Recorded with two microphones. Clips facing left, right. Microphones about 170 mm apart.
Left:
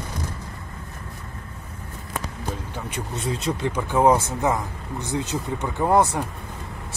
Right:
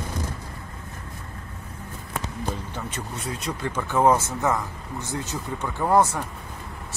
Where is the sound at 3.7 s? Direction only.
15° left (ahead or behind).